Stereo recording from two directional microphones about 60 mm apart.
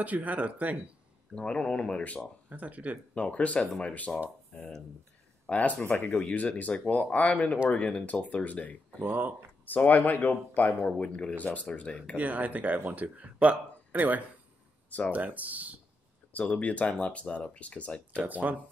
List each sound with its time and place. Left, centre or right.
0.0 s speech: right
1.3 s speech: centre
2.5 s speech: right
3.2 s speech: left
4.5 s speech: centre
5.5 s speech: left
9.0 s speech: right
9.7 s speech: left
12.2 s speech: right
14.9 s speech: left
15.1 s speech: right
16.3 s speech: left
18.2 s speech: right